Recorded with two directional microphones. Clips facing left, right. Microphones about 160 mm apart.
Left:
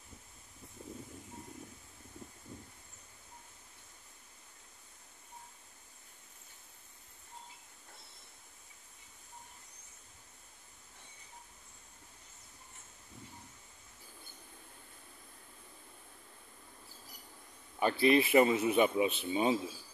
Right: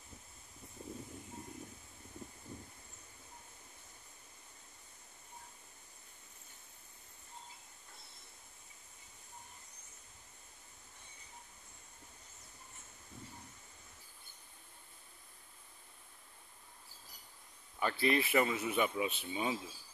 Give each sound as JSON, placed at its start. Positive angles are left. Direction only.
{"t": 17.7, "sound": "a man's voice", "side_deg": 20}